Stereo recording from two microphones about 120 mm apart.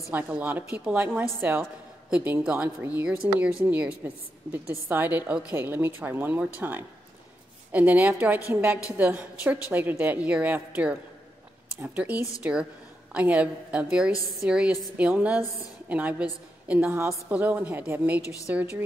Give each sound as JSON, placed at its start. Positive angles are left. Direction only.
{"t": 0.1, "sound": "a woman's voice", "side_deg": -15}